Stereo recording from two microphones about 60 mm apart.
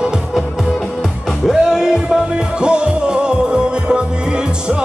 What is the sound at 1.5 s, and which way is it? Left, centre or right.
Music, centre.